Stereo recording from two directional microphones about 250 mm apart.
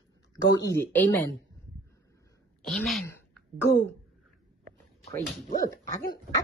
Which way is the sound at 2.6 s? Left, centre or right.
Centre.